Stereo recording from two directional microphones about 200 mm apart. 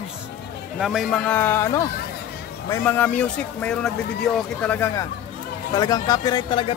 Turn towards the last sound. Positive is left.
turn(degrees=25)  # may be behind; listen again after turning